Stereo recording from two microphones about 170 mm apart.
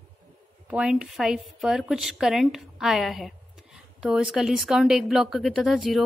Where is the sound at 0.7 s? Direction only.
5° right (ahead or behind).